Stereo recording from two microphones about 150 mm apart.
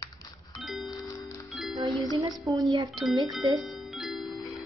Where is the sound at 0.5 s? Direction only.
Centre (ahead or behind).